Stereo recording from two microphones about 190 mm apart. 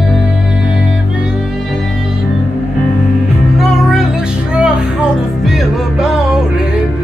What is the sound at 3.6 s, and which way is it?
Music, centre (ahead or behind).